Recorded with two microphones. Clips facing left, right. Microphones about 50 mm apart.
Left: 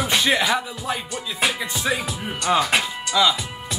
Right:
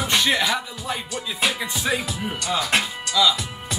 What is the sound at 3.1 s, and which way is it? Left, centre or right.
Speech, centre.